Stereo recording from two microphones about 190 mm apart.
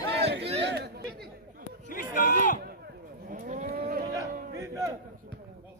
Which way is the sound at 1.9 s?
50° left (ahead or behind).